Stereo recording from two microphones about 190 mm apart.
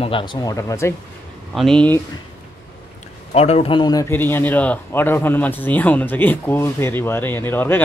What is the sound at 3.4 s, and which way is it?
Speech, 35° left (ahead or behind).